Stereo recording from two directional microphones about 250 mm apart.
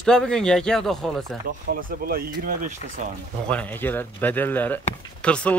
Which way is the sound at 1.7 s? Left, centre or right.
Right.